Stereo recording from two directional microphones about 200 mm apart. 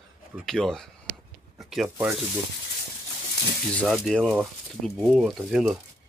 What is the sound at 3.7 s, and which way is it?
Speech, centre (ahead or behind).